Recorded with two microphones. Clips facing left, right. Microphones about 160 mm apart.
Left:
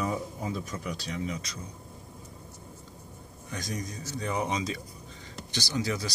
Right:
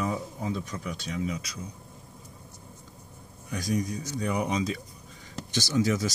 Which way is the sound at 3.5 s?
15° right (ahead or behind).